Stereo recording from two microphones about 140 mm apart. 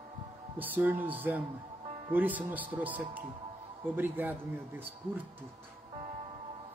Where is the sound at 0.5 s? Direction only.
10° right (ahead or behind).